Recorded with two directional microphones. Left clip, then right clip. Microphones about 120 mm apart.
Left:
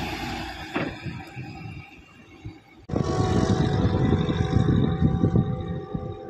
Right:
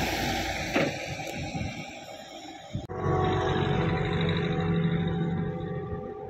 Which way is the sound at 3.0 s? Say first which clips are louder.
Even; 15° left (ahead or behind).